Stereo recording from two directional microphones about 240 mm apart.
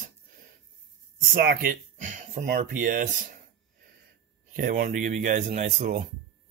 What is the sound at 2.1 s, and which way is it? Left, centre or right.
Speech, right.